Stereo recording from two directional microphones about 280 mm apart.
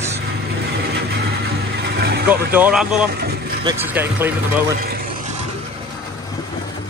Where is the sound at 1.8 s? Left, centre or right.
Right.